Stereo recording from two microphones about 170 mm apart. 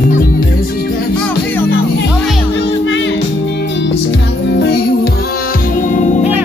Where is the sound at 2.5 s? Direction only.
90° left.